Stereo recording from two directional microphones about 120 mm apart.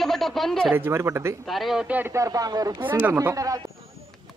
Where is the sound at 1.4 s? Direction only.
Centre (ahead or behind).